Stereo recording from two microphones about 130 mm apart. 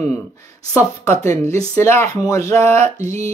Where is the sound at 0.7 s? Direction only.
20° left (ahead or behind).